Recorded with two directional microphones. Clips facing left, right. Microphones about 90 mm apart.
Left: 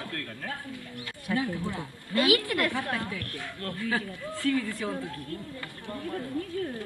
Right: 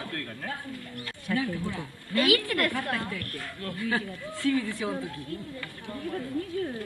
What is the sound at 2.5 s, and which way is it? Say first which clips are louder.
A woman's voice: even; 5° left (ahead or behind).